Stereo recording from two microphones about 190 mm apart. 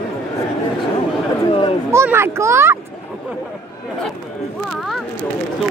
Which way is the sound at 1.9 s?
15° right (ahead or behind).